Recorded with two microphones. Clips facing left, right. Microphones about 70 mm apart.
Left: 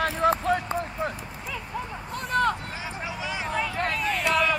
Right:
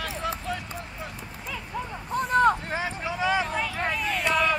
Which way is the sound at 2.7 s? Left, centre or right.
Right.